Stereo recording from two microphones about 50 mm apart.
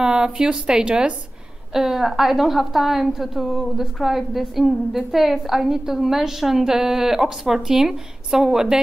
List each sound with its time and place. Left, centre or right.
0.0 s a woman's voice: centre